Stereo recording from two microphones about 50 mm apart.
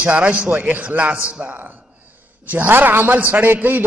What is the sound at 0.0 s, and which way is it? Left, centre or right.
A man's voice, right.